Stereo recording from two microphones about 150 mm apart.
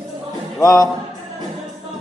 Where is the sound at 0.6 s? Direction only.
20° left (ahead or behind).